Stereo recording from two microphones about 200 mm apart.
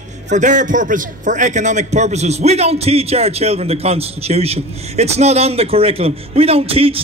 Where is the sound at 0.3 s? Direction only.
40° right (ahead or behind).